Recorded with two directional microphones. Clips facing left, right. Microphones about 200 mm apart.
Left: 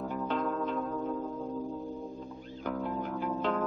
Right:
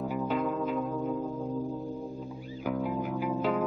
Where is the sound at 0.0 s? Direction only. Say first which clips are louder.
Right 3 dB; 10° right (ahead or behind).